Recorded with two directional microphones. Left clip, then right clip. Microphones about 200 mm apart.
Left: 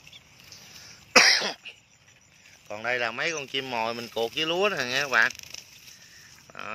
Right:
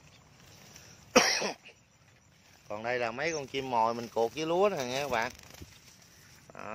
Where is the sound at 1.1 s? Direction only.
20° right (ahead or behind).